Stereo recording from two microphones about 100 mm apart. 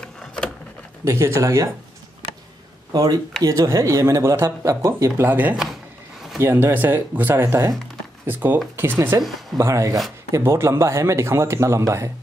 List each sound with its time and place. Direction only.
1.0 s speech: 30° right (ahead or behind)
2.9 s speech: 40° right (ahead or behind)
5.3 s speech: 15° right (ahead or behind)